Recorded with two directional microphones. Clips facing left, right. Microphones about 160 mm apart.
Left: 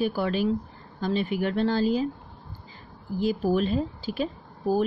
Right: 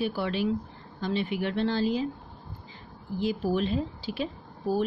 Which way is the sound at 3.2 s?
45° left (ahead or behind).